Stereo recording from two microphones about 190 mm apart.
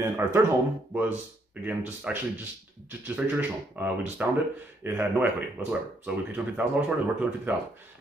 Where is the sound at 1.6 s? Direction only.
10° right (ahead or behind).